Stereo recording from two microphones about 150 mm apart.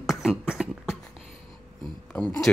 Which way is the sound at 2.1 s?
10° left (ahead or behind).